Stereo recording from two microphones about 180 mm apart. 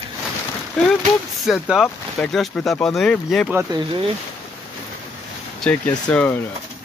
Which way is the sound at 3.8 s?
30° right (ahead or behind).